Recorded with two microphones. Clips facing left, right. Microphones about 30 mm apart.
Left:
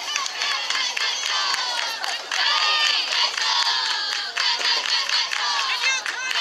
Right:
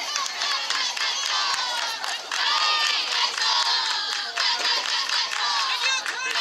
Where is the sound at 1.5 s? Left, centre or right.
Centre.